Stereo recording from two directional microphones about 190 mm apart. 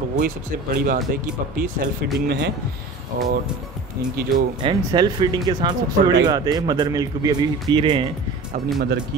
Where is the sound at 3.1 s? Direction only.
50° right (ahead or behind).